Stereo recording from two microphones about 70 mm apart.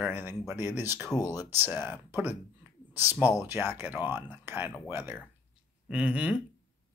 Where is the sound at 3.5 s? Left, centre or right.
Right.